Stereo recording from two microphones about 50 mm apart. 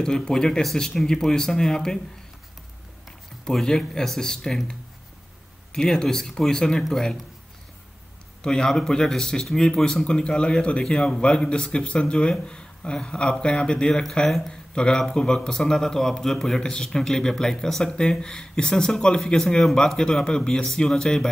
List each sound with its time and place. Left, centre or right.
0.0 s a man's voice: centre
3.1 s a sound: centre
3.6 s a man's voice: centre
5.7 s a man's voice: centre
8.4 s a man's voice: centre